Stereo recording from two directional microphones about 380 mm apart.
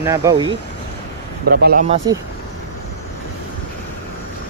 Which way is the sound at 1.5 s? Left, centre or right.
Right.